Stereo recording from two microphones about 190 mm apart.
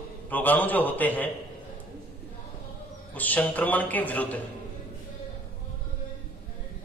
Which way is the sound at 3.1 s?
10° left (ahead or behind).